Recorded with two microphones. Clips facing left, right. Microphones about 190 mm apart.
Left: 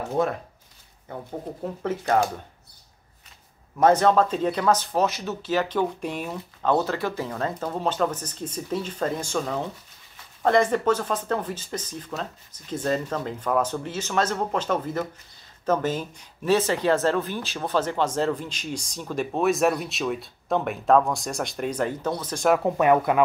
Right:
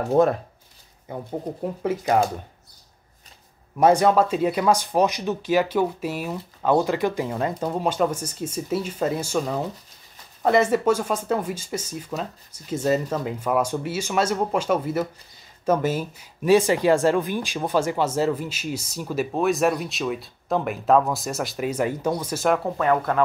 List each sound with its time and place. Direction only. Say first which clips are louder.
1.0 s speech: right 4 dB; 15° right (ahead or behind)
3.7 s speech: right 1 dB; 10° right (ahead or behind)
22.8 s speech: left 2 dB; 15° left (ahead or behind)